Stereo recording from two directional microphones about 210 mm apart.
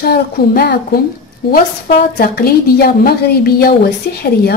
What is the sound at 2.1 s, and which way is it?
A woman's voice, 45° left (ahead or behind).